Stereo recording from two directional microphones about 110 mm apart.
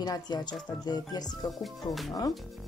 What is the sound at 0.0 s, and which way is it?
Speech, 40° left (ahead or behind).